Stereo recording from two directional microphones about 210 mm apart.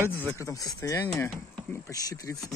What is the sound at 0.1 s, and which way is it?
Speech, 10° left (ahead or behind).